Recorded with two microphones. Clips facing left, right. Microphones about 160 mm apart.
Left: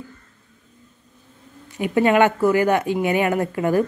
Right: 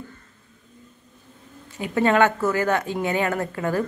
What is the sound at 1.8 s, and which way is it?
Speech, 15° left (ahead or behind).